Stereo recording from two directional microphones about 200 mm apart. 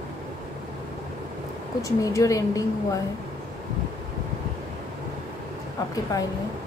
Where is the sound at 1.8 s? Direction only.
15° left (ahead or behind).